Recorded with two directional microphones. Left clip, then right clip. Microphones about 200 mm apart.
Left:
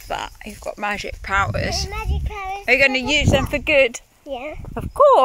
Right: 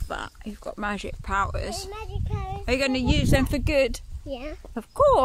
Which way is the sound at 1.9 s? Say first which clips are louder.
Left 7 dB; 20° left (ahead or behind).